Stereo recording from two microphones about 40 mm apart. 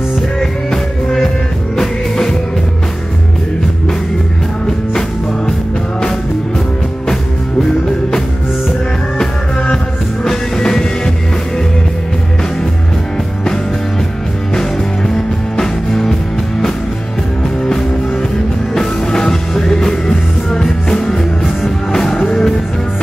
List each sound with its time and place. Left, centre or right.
9.2 s music: centre
15.5 s music: centre
18.8 s music: centre